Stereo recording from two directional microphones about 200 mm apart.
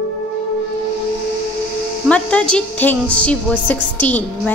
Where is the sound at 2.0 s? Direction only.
5° left (ahead or behind).